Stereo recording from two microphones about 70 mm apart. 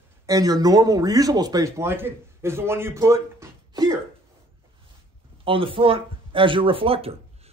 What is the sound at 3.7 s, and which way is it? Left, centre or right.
Cough, right.